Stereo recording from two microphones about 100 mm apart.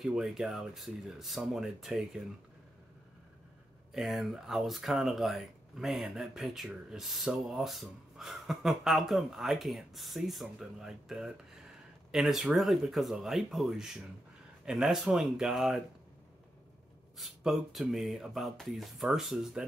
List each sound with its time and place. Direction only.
0.0 s speech: 5° right (ahead or behind)
3.9 s speech: centre (ahead or behind)
17.2 s speech: 5° right (ahead or behind)